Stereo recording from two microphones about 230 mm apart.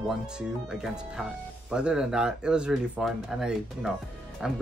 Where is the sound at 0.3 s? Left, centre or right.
Centre.